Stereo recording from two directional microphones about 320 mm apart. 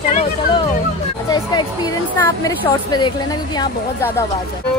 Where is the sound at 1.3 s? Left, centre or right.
Centre.